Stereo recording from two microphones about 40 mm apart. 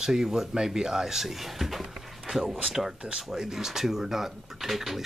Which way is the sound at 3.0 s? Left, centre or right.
Centre.